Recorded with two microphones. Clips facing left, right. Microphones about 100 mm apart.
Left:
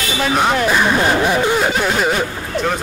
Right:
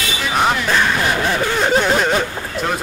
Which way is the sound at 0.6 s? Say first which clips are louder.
Left 3 dB; 15° left (ahead or behind).